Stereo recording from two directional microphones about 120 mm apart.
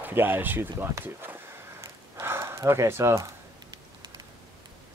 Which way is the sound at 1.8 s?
25° right (ahead or behind).